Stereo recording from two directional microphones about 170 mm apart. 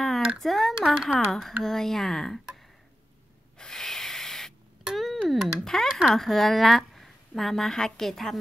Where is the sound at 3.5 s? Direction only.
5° left (ahead or behind).